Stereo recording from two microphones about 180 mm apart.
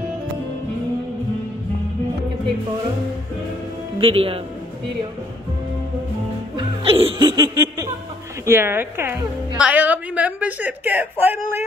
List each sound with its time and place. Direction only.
4.0 s speech: 30° right (ahead or behind)
6.5 s music: 30° right (ahead or behind)
8.5 s a woman's voice: 15° right (ahead or behind)